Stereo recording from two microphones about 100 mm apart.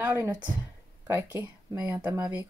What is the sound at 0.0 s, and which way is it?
Speech, 20° right (ahead or behind).